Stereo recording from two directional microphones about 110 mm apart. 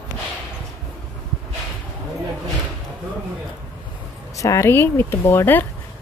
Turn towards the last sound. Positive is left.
turn(degrees=20)  # may be behind; listen again after turning